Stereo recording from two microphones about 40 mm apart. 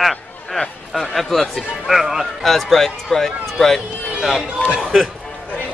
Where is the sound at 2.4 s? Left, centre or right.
Centre.